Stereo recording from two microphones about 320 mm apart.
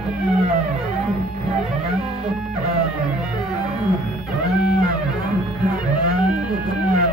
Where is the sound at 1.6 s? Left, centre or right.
Centre.